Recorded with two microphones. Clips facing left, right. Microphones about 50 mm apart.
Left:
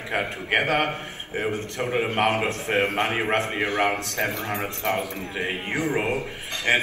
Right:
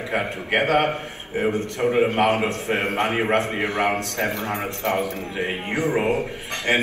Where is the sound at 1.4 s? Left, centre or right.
Right.